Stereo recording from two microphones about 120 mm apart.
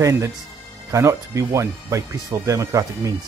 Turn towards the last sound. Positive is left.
turn(degrees=-25)  # may be behind; listen again after turning